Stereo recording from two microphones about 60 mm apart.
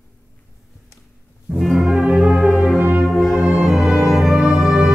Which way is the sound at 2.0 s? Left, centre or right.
Centre.